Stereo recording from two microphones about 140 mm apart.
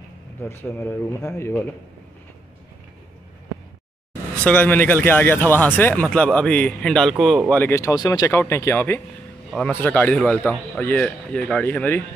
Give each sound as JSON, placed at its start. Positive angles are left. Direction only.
{"t": 0.4, "sound": "speech", "side_deg": 15}
{"t": 4.5, "sound": "speech", "side_deg": 10}
{"t": 7.4, "sound": "speech", "side_deg": 10}